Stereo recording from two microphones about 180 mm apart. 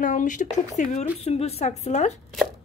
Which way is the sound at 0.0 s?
45° left (ahead or behind).